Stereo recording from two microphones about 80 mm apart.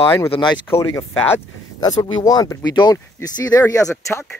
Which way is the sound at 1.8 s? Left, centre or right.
Left.